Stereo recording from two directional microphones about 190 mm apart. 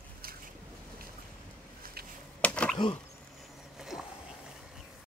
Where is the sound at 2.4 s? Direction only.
5° left (ahead or behind).